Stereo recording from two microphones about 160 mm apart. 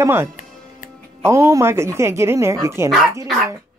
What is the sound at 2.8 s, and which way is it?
Speech, centre (ahead or behind).